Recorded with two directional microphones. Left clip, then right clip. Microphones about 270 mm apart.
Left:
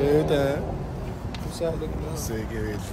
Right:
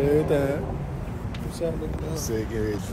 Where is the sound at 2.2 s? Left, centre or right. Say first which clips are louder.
Right 6 dB; centre.